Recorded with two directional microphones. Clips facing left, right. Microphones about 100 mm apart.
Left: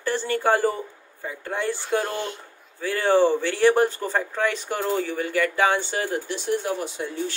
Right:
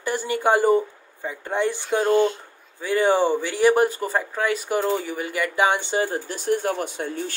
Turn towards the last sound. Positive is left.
turn(degrees=-50)  # may be behind; listen again after turning